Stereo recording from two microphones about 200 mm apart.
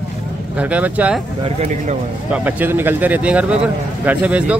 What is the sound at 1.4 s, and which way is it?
Speech, 35° right (ahead or behind).